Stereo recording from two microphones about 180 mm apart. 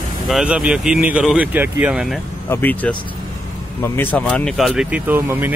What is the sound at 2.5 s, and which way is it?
Speech, 10° left (ahead or behind).